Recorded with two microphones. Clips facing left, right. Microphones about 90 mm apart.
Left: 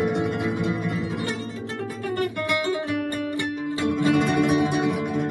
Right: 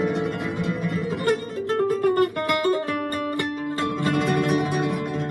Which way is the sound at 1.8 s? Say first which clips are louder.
Right 8 dB; 60° right (ahead or behind).